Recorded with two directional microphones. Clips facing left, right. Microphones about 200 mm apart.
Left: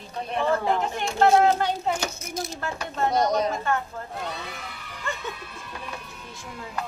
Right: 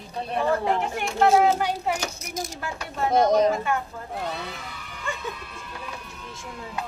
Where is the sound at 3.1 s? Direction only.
50° right (ahead or behind).